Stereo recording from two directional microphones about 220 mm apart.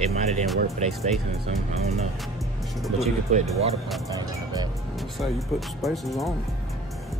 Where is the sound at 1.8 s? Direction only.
30° right (ahead or behind).